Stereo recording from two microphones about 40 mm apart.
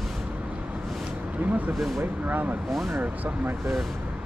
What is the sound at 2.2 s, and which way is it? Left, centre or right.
Speech, right.